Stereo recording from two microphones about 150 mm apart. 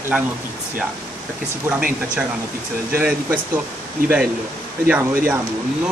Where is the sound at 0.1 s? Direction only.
5° right (ahead or behind).